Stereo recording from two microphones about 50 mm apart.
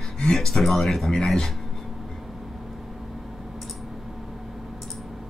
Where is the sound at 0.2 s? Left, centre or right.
Centre.